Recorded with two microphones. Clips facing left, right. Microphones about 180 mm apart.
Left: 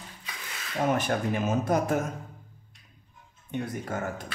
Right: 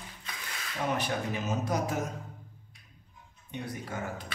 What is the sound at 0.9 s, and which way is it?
Speech, 50° left (ahead or behind).